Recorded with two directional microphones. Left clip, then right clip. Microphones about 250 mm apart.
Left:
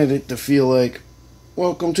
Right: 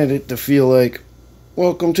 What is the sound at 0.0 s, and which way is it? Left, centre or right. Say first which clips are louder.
Speech: right 1 dB; centre.